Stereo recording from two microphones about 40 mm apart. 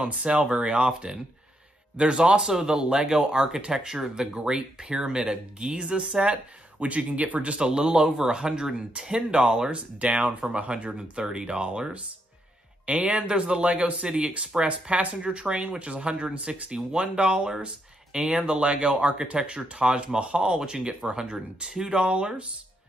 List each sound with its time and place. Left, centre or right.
0.0 s speech: right
2.5 s speech: centre
2.8 s speech: centre
7.6 s speech: centre
14.7 s speech: right
15.2 s speech: right
22.0 s speech: right